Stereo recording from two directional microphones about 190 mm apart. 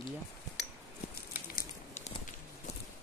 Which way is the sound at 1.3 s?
50° left (ahead or behind).